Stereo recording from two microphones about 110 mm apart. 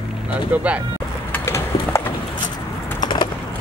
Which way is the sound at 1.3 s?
25° left (ahead or behind).